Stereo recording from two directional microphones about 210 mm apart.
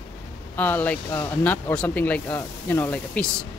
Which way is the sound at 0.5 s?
10° left (ahead or behind).